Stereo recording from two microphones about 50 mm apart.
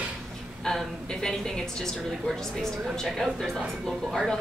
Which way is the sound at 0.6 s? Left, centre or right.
Centre.